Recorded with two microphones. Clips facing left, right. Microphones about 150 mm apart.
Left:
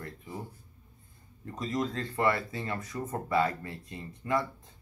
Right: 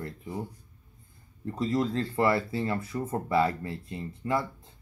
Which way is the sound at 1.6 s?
30° right (ahead or behind).